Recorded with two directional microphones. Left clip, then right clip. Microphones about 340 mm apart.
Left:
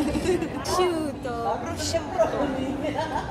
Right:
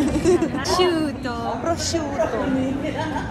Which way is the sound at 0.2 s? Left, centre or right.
Centre.